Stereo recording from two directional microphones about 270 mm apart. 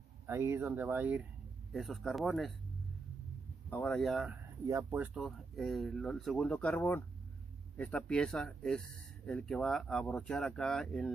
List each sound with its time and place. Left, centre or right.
0.3 s speech: centre
3.7 s speech: centre